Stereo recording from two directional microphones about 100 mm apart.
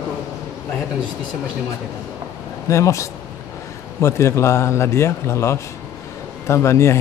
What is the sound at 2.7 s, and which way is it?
A man's voice, 30° left (ahead or behind).